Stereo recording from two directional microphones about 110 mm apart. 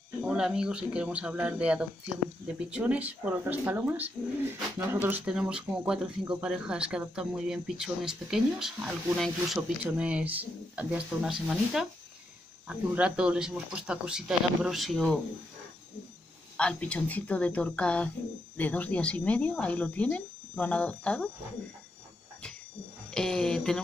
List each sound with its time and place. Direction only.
0.3 s speech: 5° right (ahead or behind)
16.5 s speech: 10° left (ahead or behind)
23.1 s speech: 5° left (ahead or behind)